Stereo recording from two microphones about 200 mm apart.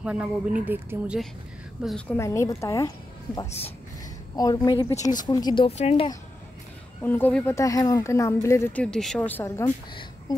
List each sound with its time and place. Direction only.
0.0 s speech: 5° right (ahead or behind); by 2.9 s 15° left (ahead or behind)
4.4 s speech: 20° left (ahead or behind)
7.0 s speech: 10° left (ahead or behind)